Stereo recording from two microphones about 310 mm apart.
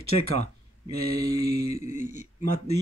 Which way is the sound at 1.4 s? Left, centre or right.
Right.